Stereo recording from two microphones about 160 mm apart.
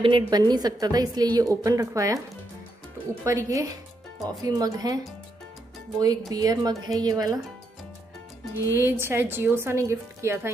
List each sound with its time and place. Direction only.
0.3 s a woman's voice: 25° right (ahead or behind)
3.3 s a woman's voice: 20° right (ahead or behind)
5.9 s a woman's voice: 20° right (ahead or behind)
8.7 s speech: 15° right (ahead or behind)